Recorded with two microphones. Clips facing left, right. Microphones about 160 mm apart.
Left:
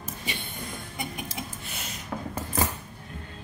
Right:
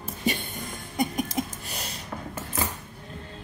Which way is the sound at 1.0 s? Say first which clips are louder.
Right 10 dB; 40° right (ahead or behind).